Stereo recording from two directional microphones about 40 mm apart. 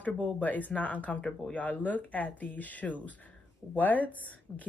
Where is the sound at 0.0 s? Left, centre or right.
Left.